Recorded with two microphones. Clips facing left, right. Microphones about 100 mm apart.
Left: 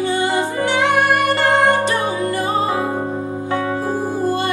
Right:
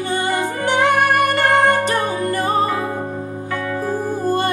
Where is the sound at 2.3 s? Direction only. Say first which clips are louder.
Right 1 dB; 45° right (ahead or behind).